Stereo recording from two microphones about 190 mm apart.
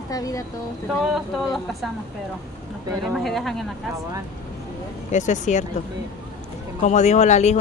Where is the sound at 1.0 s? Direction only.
Centre (ahead or behind).